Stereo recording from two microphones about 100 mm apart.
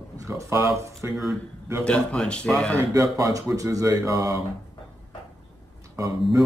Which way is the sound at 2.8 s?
35° right (ahead or behind).